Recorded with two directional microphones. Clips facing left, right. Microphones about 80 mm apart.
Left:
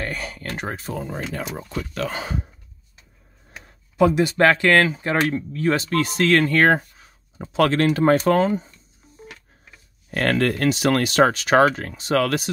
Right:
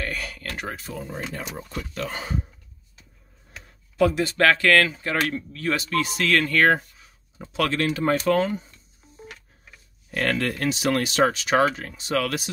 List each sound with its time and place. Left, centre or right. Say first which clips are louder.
0.0 s a sound: left 2 dB; left
1.0 s speech: left 4 dB; left
3.5 s speech: left 2 dB; centre; by 8.2 s left
8.3 s speech: left 3 dB; left
10.1 s speech: left 4 dB; left